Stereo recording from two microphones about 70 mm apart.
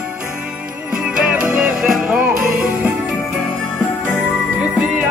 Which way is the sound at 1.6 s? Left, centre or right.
Centre.